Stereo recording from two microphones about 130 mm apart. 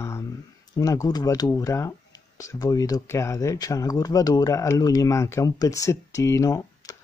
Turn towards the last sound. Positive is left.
turn(degrees=25)  # may be behind; listen again after turning